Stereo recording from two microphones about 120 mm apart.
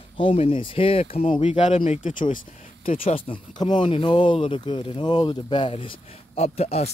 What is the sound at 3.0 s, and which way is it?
Speech, 50° left (ahead or behind).